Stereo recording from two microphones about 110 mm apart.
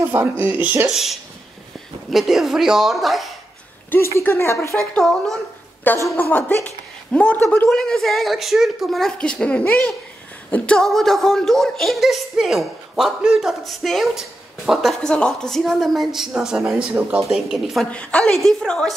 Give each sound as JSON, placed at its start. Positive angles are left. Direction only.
{"t": 0.1, "sound": "speech", "side_deg": -15}
{"t": 0.8, "sound": "speech", "side_deg": 0}
{"t": 4.2, "sound": "speech", "side_deg": 25}
{"t": 4.7, "sound": "speech", "side_deg": 5}
{"t": 6.1, "sound": "a woman's voice", "side_deg": 20}
{"t": 7.7, "sound": "speech", "side_deg": 5}
{"t": 17.8, "sound": "speech", "side_deg": 10}